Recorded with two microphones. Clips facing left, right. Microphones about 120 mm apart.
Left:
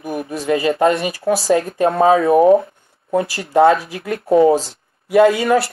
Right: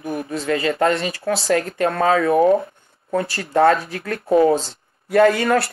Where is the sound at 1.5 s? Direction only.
20° left (ahead or behind).